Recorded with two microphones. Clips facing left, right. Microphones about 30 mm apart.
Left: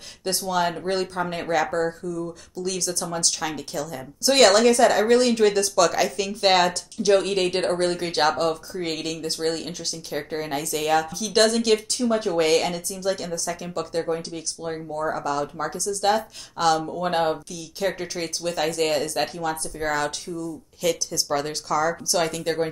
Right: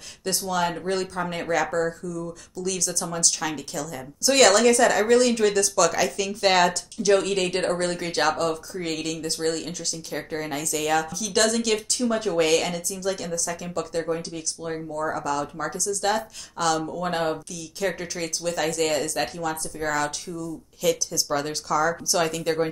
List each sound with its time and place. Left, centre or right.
0.5 s speech: centre
11.5 s a woman's voice: centre
16.8 s a woman's voice: centre